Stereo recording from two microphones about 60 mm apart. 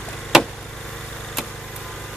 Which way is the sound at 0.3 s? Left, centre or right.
Centre.